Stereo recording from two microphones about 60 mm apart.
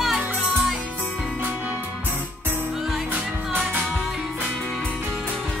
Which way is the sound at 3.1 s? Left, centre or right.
Right.